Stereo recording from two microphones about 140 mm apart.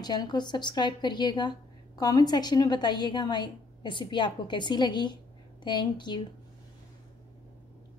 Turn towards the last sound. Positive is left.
turn(degrees=35)  # may be behind; listen again after turning